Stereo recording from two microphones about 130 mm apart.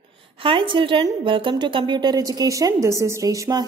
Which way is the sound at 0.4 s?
40° right (ahead or behind).